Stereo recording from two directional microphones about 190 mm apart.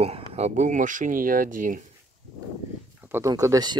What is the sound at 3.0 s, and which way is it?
Speech, 15° right (ahead or behind).